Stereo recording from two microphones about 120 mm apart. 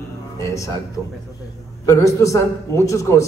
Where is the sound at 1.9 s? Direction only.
25° left (ahead or behind).